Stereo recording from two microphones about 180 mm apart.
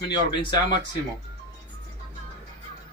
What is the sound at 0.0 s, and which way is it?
Speech, 25° left (ahead or behind).